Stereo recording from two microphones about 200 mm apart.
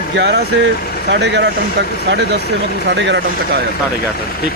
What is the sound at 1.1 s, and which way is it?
Speech, 60° right (ahead or behind).